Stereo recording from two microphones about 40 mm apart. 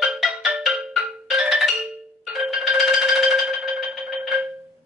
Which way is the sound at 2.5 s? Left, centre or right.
Centre.